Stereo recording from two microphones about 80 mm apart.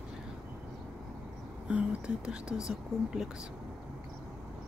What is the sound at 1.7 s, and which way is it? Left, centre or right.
Speech, centre.